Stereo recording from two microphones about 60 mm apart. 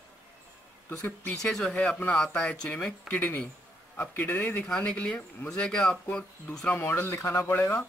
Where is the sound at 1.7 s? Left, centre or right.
Left.